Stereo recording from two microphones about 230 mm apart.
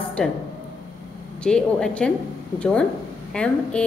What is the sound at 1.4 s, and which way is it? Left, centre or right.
A woman's voice, centre.